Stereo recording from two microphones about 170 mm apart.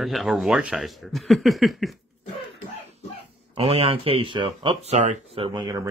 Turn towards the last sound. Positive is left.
turn(degrees=-20)  # may be behind; listen again after turning